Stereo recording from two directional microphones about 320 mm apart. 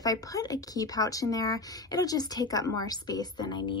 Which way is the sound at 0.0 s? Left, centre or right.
Centre.